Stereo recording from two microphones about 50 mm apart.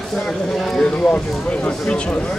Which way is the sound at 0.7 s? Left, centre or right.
Centre.